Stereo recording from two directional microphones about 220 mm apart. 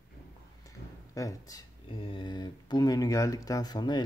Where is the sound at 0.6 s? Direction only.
15° left (ahead or behind).